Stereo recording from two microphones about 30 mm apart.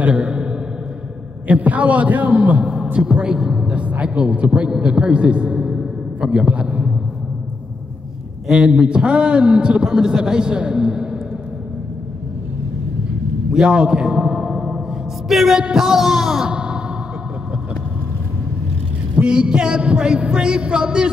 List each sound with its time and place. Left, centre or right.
0.0 s a sound: right
1.5 s a man's voice: right
2.6 s speech: right
3.7 s a man's voice: right
4.5 s a man's voice: right
5.4 s music: right
6.2 s a man's voice: right
8.5 s a man's voice: right
13.5 s a man's voice: right
14.5 s gong: centre
15.2 s music: centre
16.4 s a sound: right
19.1 s a man's voice: right